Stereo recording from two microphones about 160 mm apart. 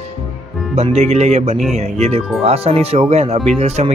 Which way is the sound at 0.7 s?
45° right (ahead or behind).